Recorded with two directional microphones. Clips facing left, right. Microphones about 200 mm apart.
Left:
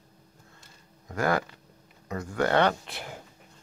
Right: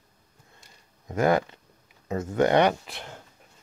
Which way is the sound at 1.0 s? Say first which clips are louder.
Right 4 dB; 20° right (ahead or behind).